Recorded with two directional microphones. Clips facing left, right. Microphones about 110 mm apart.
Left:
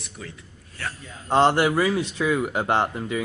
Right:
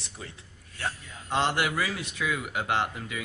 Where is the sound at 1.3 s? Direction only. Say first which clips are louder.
Left 8 dB; 35° left (ahead or behind).